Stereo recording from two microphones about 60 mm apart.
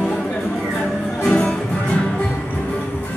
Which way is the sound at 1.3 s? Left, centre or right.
Centre.